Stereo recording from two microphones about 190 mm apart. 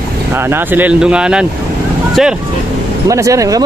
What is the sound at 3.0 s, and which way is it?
Speech, 15° right (ahead or behind).